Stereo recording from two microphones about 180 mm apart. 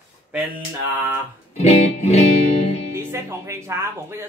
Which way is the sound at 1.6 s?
40° left (ahead or behind).